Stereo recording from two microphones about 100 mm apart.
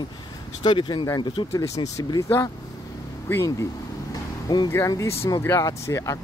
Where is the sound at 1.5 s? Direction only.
30° left (ahead or behind).